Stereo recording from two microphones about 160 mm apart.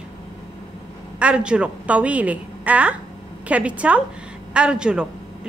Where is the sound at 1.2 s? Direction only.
5° right (ahead or behind).